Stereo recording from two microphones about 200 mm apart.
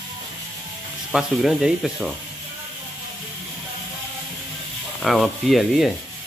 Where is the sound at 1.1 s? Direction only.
Centre (ahead or behind).